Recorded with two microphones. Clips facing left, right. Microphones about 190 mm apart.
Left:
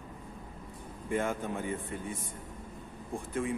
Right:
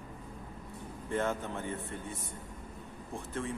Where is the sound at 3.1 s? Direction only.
15° left (ahead or behind).